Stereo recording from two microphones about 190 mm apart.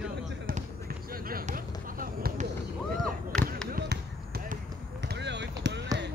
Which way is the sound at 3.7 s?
60° right (ahead or behind).